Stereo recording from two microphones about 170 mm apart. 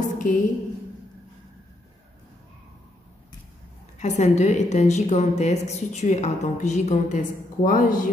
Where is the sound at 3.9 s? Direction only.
45° left (ahead or behind).